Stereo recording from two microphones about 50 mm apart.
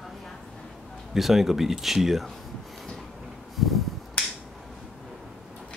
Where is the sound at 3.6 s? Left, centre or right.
Centre.